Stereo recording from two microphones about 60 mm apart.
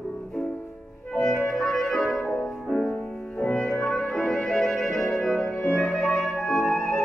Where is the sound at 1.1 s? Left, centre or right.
Centre.